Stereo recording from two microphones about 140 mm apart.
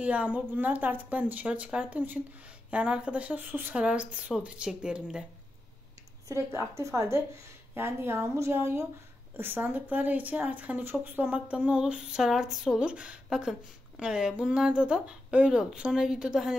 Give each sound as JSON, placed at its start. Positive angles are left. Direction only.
{"t": 0.0, "sound": "speech", "side_deg": -10}
{"t": 6.5, "sound": "a woman's voice", "side_deg": -20}